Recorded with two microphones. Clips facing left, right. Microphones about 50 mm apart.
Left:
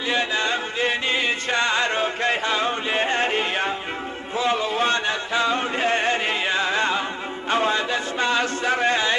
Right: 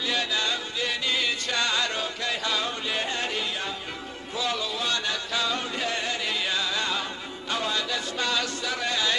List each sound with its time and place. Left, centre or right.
0.1 s music: left
4.4 s chant: left
7.4 s music: left